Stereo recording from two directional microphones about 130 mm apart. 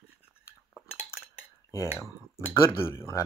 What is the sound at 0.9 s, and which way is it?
Cutlery, 5° right (ahead or behind).